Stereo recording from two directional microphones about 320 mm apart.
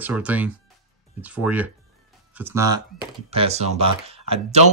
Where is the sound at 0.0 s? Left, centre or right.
Centre.